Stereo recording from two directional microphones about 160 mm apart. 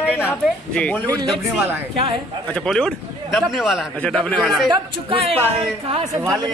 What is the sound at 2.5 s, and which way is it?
A man's voice, 5° left (ahead or behind).